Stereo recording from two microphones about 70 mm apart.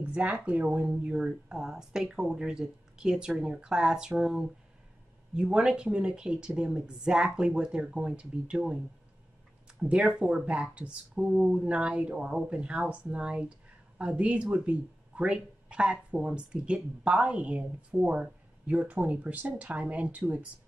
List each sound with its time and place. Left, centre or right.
0.0 s speech: right
9.8 s speech: centre